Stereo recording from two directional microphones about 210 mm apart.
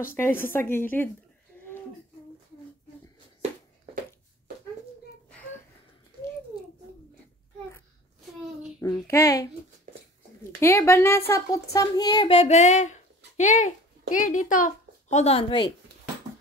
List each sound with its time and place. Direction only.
0.1 s a woman's voice: 10° left (ahead or behind)
9.0 s a woman's voice: 15° left (ahead or behind)
9.9 s a sound: 40° right (ahead or behind)
10.6 s a woman's voice: 10° left (ahead or behind)